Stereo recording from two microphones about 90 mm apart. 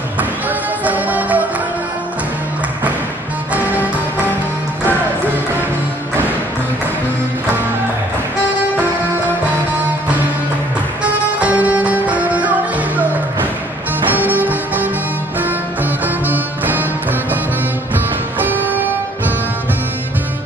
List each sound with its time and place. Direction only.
0.8 s music: 20° right (ahead or behind)
11.3 s music: 15° right (ahead or behind)
16.3 s music: 20° right (ahead or behind)
18.4 s music: 20° right (ahead or behind)